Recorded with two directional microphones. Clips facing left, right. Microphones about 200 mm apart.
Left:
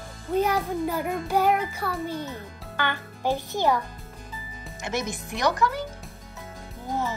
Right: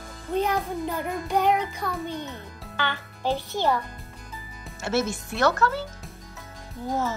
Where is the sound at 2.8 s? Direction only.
15° left (ahead or behind).